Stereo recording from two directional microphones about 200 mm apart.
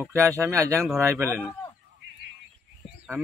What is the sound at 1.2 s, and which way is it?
Speech, 10° left (ahead or behind).